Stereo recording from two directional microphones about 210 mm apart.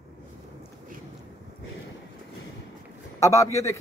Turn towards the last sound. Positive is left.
turn(degrees=15)  # may be behind; listen again after turning